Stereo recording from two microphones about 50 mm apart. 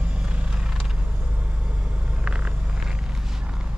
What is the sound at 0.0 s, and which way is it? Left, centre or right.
Vehicle, centre.